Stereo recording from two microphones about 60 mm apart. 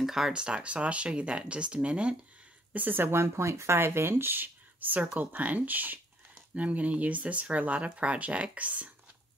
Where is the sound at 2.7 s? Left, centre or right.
Right.